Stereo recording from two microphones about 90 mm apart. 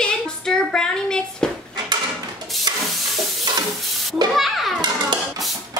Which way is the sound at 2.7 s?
50° right (ahead or behind).